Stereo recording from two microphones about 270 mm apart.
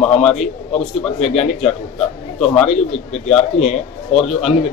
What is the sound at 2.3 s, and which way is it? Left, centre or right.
Speech, centre.